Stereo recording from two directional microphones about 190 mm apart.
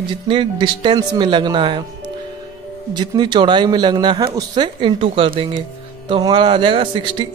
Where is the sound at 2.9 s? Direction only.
25° right (ahead or behind).